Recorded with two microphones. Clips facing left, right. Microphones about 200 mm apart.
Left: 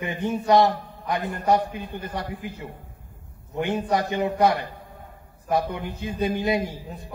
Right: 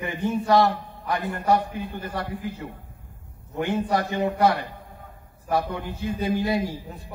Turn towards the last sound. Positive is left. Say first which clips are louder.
# even
turn(degrees=20)  # may be behind; listen again after turning